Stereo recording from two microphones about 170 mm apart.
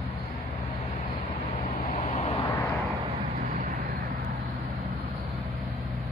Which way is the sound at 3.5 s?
60° right (ahead or behind).